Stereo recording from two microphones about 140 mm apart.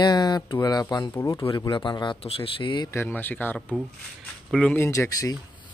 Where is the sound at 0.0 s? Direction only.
30° left (ahead or behind).